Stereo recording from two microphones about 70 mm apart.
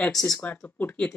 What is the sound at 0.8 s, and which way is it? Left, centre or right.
Speech, left.